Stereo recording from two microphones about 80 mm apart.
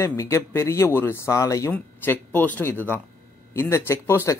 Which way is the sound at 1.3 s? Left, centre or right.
Left.